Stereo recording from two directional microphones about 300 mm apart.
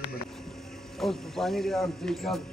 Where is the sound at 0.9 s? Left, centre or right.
Centre.